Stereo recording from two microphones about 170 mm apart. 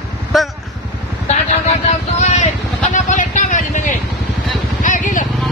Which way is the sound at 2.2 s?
45° left (ahead or behind).